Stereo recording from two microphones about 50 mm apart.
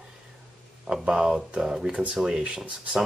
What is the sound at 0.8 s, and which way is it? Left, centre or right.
Speech, centre.